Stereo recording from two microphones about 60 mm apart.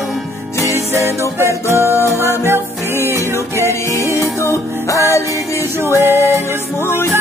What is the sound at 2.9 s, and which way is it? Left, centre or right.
Music, left.